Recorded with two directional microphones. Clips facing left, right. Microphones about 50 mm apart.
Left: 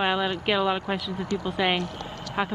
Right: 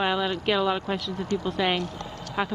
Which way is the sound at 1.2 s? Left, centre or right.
Left.